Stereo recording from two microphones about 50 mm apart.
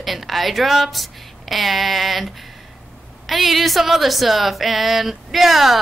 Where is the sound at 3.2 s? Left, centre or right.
Centre.